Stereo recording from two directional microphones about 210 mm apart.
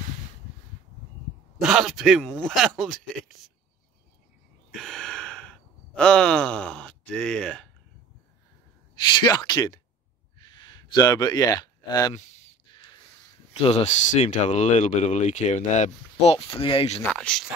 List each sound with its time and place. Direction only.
1.6 s speech: centre (ahead or behind)
4.6 s gasp: centre (ahead or behind)
9.2 s speech: 20° left (ahead or behind)
10.4 s a sound: 20° left (ahead or behind)
13.5 s speech: 25° left (ahead or behind)
17.1 s speech: 5° left (ahead or behind)